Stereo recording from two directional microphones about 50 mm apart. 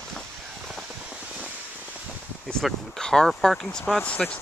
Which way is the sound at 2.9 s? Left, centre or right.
Centre.